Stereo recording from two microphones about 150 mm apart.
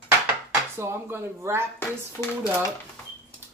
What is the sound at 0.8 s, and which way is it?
Speech, 15° right (ahead or behind).